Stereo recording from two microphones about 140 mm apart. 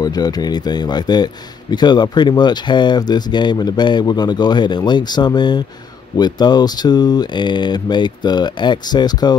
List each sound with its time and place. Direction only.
0.0 s a man's voice: 30° left (ahead or behind)